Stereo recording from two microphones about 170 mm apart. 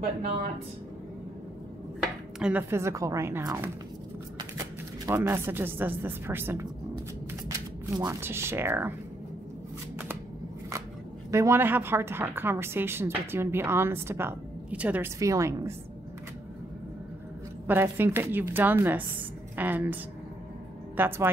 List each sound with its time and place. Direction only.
2.3 s a woman's voice: 5° right (ahead or behind)
11.2 s a woman's voice: 15° right (ahead or behind)
17.6 s a woman's voice: 10° right (ahead or behind)